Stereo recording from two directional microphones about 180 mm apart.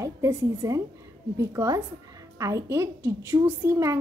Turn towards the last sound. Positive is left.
turn(degrees=-15)  # may be behind; listen again after turning